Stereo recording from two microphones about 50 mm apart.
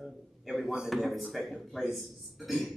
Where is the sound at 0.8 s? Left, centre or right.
Centre.